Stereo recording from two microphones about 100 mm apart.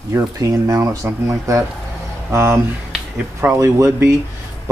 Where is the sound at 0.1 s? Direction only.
30° right (ahead or behind).